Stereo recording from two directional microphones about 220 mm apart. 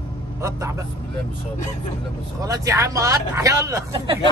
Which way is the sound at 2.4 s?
15° right (ahead or behind).